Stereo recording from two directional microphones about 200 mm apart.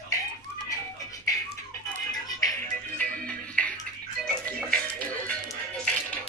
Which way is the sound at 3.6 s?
5° left (ahead or behind).